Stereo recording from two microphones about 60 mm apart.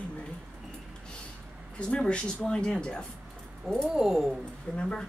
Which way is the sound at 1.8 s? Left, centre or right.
Centre.